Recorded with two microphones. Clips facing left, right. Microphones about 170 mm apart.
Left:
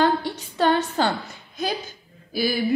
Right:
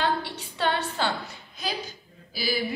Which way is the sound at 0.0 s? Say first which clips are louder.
Left 6 dB; 45° left (ahead or behind).